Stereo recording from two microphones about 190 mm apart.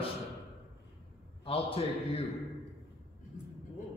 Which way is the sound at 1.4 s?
30° left (ahead or behind).